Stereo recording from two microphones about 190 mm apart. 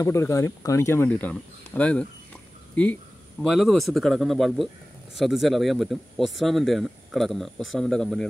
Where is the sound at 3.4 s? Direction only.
Centre (ahead or behind).